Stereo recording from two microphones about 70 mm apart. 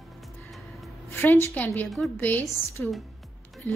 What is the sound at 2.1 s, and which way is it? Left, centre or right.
Speech, left.